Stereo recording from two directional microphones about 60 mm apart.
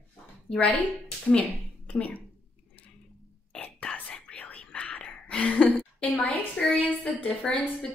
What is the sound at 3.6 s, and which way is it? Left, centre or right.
Whispering, left.